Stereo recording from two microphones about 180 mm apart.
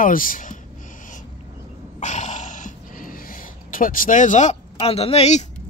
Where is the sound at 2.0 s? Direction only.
40° left (ahead or behind).